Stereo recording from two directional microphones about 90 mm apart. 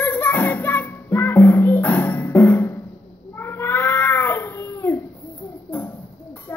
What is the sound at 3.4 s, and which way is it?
Cat, 25° left (ahead or behind).